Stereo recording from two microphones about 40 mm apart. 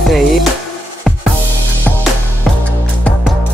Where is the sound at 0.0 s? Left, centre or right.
Centre.